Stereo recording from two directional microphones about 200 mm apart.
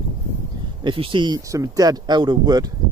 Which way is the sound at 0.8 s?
25° right (ahead or behind).